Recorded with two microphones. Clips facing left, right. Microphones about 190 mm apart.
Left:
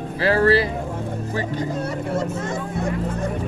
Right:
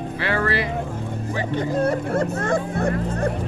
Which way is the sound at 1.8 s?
55° right (ahead or behind).